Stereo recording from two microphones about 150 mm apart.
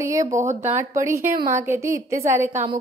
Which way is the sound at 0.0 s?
20° right (ahead or behind).